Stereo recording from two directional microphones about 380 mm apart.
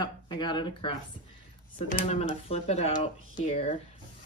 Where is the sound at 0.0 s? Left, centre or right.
Centre.